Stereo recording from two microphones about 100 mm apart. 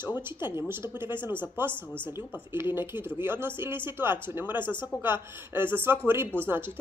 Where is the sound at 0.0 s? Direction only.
20° right (ahead or behind).